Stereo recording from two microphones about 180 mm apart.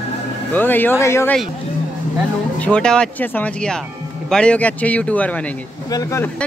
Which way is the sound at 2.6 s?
5° left (ahead or behind).